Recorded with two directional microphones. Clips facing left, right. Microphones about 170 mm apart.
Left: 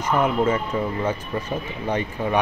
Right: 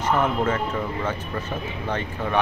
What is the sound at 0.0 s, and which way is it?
Speech, 10° left (ahead or behind).